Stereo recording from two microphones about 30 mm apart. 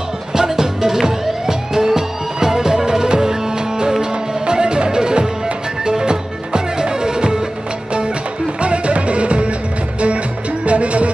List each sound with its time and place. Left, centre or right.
0.3 s music: centre
8.5 s music: right
10.6 s music: right